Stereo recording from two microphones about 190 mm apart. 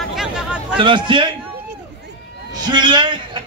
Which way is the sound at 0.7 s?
25° right (ahead or behind).